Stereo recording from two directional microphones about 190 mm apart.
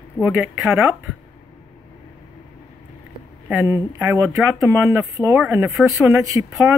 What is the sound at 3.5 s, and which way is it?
Speech, 10° right (ahead or behind).